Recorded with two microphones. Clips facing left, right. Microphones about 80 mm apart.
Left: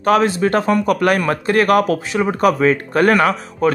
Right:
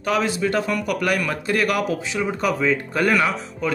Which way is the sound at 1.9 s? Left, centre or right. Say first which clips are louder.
Left 6 dB; left.